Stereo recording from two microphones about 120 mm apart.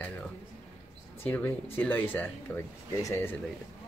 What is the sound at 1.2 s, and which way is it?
Speech, 15° left (ahead or behind).